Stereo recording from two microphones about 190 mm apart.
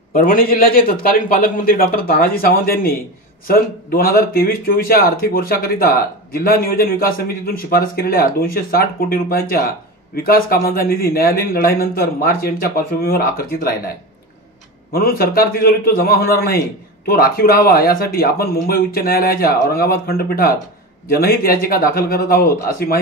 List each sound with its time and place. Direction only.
0.1 s speech: 50° left (ahead or behind)
14.9 s speech: 50° left (ahead or behind)